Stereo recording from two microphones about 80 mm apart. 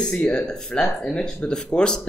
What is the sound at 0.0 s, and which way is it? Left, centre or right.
Speech, centre.